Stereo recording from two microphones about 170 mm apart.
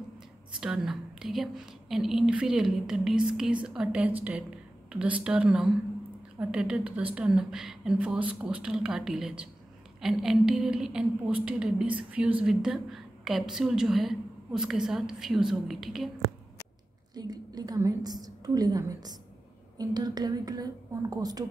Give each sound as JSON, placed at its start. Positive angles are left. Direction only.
{"t": 0.6, "sound": "a woman's voice", "side_deg": -5}
{"t": 17.1, "sound": "a woman's voice", "side_deg": -25}